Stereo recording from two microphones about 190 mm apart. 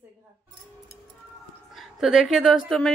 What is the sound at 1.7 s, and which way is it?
A woman's voice, centre (ahead or behind).